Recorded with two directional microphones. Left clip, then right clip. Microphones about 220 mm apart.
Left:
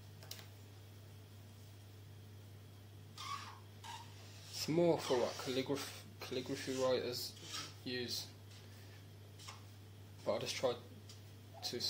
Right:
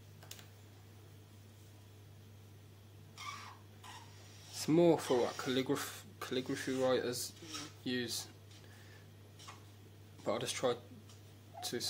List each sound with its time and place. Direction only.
4.6 s speech: 30° right (ahead or behind)
10.2 s speech: 30° right (ahead or behind)
11.6 s cat: 30° right (ahead or behind)